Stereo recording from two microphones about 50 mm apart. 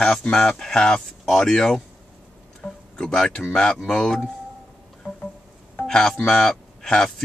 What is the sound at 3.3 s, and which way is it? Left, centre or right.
Speech, centre.